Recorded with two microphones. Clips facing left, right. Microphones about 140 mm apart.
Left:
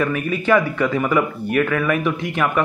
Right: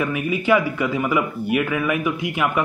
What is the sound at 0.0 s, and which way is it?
A man's voice, 10° right (ahead or behind).